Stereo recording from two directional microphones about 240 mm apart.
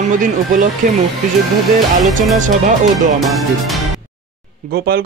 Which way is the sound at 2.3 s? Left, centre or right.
Right.